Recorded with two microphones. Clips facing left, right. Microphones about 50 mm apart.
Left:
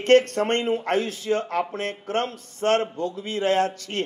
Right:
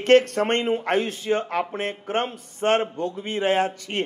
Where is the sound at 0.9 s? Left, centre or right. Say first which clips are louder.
Right 1 dB; right.